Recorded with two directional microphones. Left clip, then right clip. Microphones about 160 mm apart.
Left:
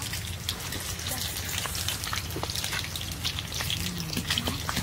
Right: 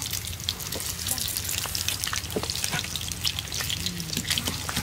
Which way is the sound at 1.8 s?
20° right (ahead or behind).